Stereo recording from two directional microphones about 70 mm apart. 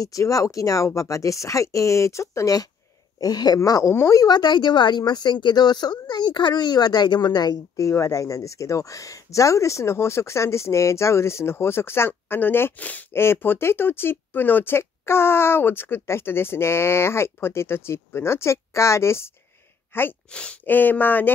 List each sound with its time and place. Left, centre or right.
0.0 s speech: left
3.2 s speech: left
3.8 s speech: left
4.3 s a woman's voice: left
7.7 s speech: left
20.2 s speech: centre
20.6 s speech: left